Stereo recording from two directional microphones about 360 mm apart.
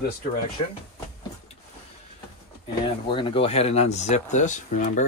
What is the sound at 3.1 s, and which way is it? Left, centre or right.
Speech, centre.